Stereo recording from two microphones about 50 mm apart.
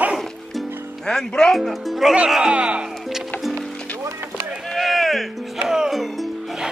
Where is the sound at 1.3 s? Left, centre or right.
Centre.